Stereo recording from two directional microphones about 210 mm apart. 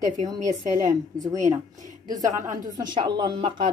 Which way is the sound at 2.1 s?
15° right (ahead or behind).